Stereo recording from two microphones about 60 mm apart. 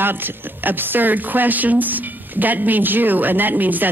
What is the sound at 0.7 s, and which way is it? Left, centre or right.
A woman's voice, right.